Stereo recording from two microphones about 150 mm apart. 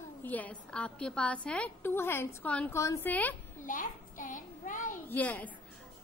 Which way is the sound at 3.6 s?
60° left (ahead or behind).